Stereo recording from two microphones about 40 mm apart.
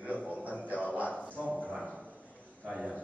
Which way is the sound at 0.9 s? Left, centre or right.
Right.